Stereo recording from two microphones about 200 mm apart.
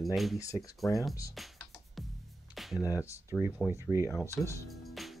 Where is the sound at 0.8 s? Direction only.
Centre (ahead or behind).